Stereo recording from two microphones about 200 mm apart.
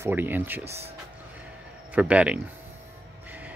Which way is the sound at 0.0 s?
10° right (ahead or behind).